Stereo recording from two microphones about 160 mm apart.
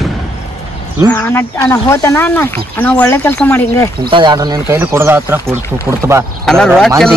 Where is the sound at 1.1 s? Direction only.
10° left (ahead or behind).